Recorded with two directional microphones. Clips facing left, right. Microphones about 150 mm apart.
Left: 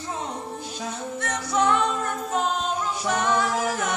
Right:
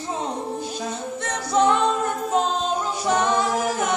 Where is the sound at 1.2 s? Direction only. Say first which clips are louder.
Right 4 dB; 25° right (ahead or behind).